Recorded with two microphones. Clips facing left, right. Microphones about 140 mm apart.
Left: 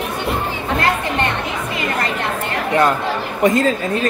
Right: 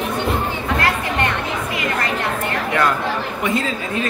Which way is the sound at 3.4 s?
40° left (ahead or behind).